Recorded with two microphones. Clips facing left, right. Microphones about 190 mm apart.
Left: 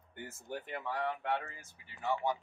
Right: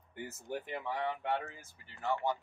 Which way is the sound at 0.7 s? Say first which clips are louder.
Left 1 dB; 5° right (ahead or behind).